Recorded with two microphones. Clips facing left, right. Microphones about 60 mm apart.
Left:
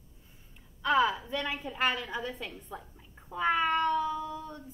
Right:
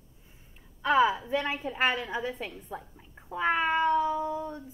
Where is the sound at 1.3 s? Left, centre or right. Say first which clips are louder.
Right 4 dB; right.